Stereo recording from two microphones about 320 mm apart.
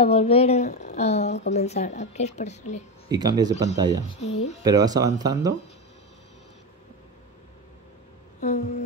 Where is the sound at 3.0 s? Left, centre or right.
Centre.